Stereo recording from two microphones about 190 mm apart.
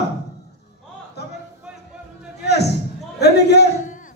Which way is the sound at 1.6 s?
5° right (ahead or behind).